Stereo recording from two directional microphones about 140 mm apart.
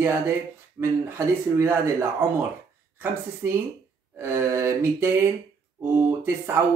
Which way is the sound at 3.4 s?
20° right (ahead or behind).